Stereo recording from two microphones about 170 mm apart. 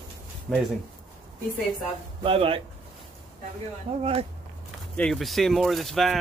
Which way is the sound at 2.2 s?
30° right (ahead or behind).